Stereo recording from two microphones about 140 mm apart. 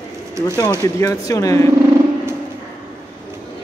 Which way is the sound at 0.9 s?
25° left (ahead or behind).